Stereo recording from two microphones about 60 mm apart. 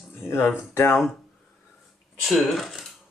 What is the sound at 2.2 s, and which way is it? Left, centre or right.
Speech, centre.